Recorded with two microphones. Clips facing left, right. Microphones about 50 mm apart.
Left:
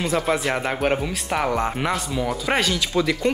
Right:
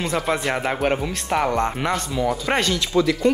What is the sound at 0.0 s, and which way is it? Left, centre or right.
Speech, centre.